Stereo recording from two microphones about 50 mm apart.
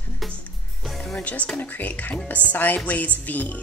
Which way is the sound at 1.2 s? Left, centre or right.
Left.